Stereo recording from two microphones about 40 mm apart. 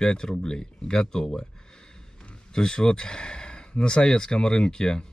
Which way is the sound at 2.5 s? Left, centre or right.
Left.